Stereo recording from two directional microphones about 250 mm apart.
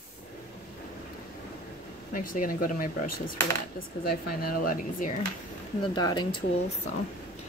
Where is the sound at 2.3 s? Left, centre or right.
Left.